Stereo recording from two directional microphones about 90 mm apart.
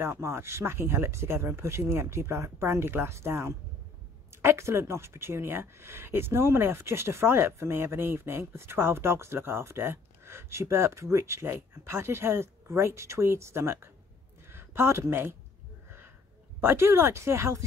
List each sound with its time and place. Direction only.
0.0 s speech: 30° right (ahead or behind)
16.6 s speech: 30° right (ahead or behind)